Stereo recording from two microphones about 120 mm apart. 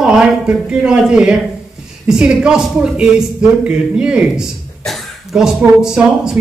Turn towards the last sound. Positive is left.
turn(degrees=-5)  # may be behind; listen again after turning